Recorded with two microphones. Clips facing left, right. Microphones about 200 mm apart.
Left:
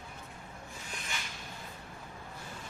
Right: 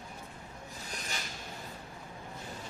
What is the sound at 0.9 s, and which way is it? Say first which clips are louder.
Rub: right 2 dB; 40° right (ahead or behind).